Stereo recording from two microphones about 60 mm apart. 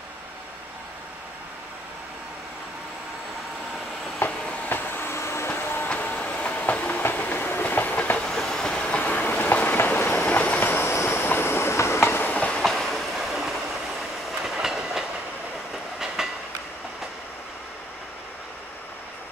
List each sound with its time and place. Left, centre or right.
4.2 s train: left
4.6 s vehicle: left
5.1 s vehicle: left
5.5 s train: left
5.9 s train: left
8.3 s train: centre; by 12.2 s left
12.2 s train: left
12.6 s train: centre
16.2 s train: centre